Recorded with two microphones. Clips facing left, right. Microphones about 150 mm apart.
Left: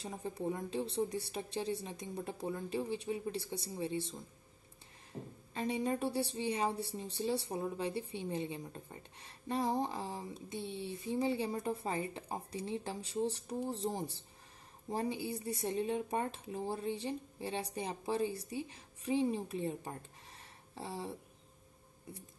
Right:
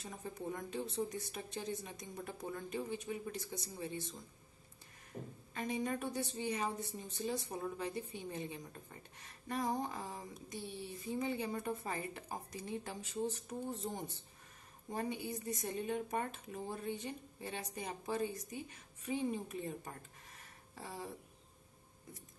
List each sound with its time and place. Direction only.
0.0 s a woman's voice: 30° left (ahead or behind)
5.5 s a woman's voice: 30° left (ahead or behind)